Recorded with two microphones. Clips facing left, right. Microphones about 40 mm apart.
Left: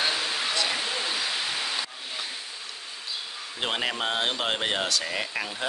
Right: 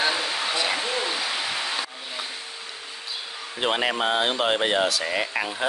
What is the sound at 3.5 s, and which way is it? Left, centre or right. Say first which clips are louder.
Speech: right 5 dB; centre.